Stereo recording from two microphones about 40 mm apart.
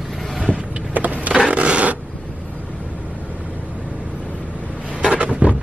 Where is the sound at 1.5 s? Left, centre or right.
Right.